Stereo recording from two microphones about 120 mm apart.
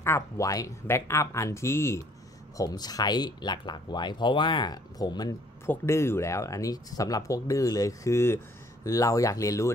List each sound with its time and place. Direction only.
0.0 s speech: 25° left (ahead or behind)
5.7 s speech: 20° left (ahead or behind)